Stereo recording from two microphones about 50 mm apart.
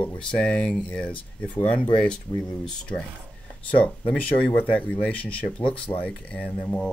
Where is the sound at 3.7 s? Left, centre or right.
Left.